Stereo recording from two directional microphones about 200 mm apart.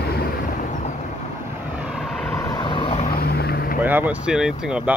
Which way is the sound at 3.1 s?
50° left (ahead or behind).